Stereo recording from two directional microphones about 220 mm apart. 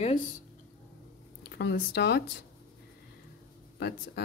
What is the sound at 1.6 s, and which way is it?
Speech, 50° left (ahead or behind).